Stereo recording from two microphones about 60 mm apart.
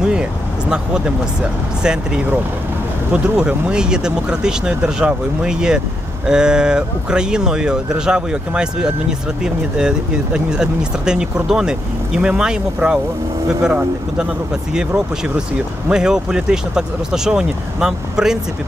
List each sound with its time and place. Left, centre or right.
0.0 s speech: centre
14.9 s speech: centre